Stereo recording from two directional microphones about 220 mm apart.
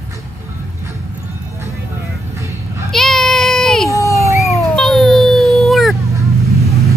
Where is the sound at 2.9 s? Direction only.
Centre (ahead or behind).